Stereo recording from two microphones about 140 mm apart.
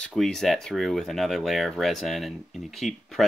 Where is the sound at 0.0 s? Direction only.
5° left (ahead or behind).